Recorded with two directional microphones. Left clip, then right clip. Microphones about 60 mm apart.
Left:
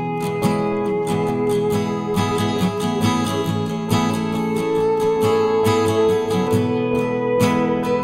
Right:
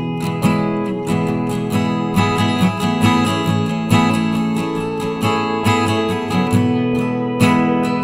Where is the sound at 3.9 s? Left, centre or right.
Right.